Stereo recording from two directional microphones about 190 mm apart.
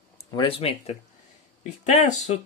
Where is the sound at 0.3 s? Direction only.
25° left (ahead or behind).